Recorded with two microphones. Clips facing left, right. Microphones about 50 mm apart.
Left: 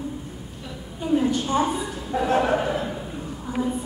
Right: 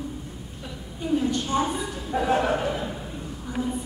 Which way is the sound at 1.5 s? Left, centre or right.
Centre.